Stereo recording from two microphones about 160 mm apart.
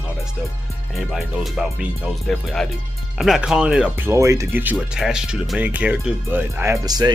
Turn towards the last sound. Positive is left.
turn(degrees=-25)  # may be behind; listen again after turning